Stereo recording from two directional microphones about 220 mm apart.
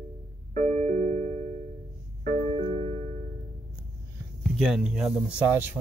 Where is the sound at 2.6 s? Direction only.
30° right (ahead or behind).